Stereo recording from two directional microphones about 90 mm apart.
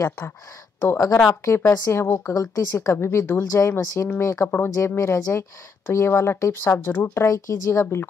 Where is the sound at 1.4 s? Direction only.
35° left (ahead or behind).